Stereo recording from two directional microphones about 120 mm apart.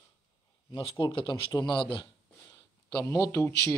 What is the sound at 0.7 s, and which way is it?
Speech, 45° left (ahead or behind).